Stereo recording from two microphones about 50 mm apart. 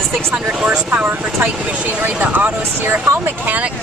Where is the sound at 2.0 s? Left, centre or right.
Right.